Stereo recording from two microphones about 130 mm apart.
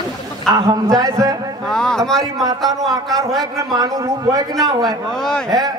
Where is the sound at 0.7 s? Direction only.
25° right (ahead or behind).